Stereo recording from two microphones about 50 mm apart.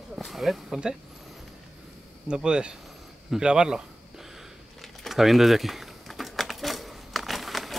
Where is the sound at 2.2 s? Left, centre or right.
Centre.